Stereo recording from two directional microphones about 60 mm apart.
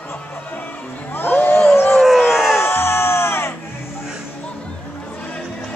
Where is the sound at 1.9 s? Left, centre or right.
Centre.